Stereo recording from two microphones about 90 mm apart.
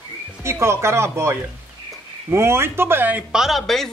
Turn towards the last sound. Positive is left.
turn(degrees=0)  # may be behind; listen again after turning